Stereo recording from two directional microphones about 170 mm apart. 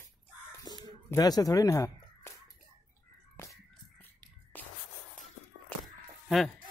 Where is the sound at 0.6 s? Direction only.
25° left (ahead or behind).